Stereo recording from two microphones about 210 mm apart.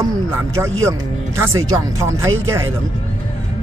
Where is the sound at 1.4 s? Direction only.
15° right (ahead or behind).